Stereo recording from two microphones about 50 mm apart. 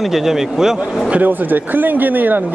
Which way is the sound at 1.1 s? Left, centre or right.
Right.